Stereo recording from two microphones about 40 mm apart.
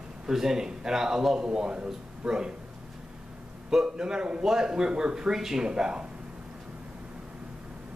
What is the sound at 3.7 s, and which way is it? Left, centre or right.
A man's voice, centre.